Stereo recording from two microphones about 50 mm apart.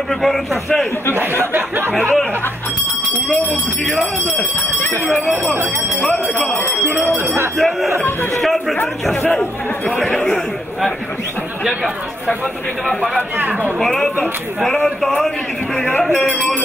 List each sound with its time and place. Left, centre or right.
0.2 s a man's voice: centre
1.1 s speech: right
6.8 s speech: left
7.5 s a man's voice: centre
13.4 s speech: right
13.7 s a man's voice: centre